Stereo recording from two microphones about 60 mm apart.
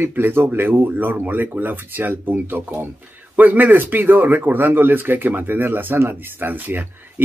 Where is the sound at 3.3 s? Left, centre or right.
Right.